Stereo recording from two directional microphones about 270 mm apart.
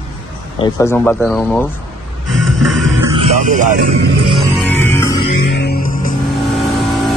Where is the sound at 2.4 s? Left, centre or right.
Right.